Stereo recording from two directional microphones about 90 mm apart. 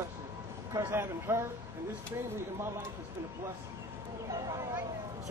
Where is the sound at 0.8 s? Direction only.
25° right (ahead or behind).